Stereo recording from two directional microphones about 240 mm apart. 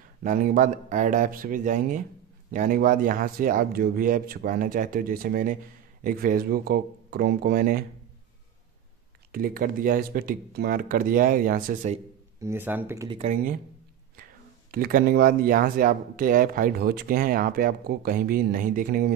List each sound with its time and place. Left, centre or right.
0.2 s speech: right
9.3 s speech: right
12.4 s speech: centre
13.2 s speech: right
14.7 s speech: right